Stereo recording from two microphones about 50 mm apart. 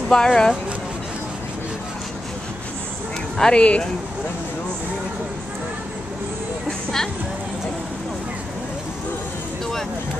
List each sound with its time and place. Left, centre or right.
0.1 s speech: centre
3.3 s speech: centre